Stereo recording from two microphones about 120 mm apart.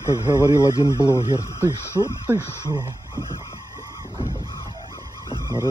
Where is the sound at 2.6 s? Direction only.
35° right (ahead or behind).